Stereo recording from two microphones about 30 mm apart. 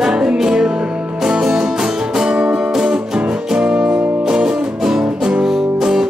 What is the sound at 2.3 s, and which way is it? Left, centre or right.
Music, right.